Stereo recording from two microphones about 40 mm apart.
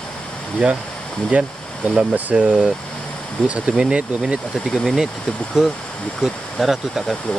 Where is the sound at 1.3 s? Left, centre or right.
Right.